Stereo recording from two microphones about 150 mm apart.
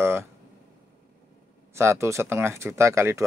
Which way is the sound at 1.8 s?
20° right (ahead or behind).